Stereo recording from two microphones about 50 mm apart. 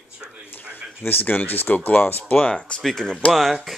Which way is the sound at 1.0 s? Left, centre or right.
Left.